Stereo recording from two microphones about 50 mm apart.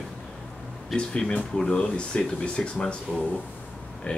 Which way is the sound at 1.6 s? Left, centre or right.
Centre.